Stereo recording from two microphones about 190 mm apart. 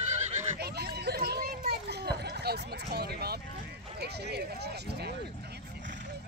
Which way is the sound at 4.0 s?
60° right (ahead or behind).